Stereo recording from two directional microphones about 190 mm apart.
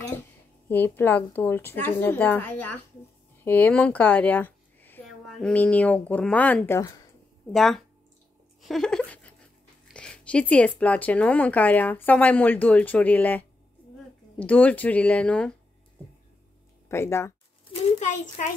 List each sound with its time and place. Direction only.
0.7 s speech: 10° left (ahead or behind)
7.5 s speech: centre (ahead or behind)
8.6 s a sound: centre (ahead or behind)
9.9 s speech: 5° left (ahead or behind)
16.9 s speech: 15° left (ahead or behind)
17.9 s a child's voice: 40° left (ahead or behind)